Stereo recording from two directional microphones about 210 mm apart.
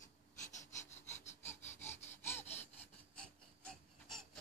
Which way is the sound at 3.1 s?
5° left (ahead or behind).